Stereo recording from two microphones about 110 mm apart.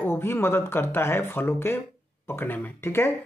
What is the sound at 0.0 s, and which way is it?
Speech, 20° left (ahead or behind).